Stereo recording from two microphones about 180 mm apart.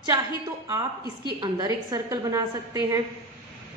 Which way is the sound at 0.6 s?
20° right (ahead or behind).